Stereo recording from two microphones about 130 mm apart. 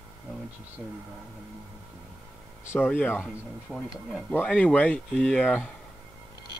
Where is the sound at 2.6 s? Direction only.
15° left (ahead or behind).